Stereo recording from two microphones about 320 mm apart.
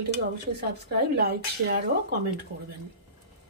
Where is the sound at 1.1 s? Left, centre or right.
Right.